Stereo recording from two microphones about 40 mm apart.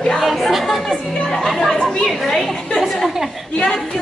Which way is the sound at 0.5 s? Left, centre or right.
Centre.